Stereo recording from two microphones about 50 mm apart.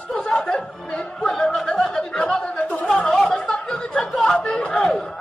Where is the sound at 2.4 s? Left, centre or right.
Left.